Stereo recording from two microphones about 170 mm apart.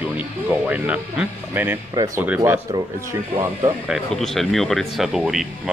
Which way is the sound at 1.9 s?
20° right (ahead or behind).